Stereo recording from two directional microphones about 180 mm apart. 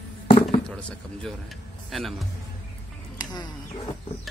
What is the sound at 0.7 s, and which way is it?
Speech, 5° left (ahead or behind).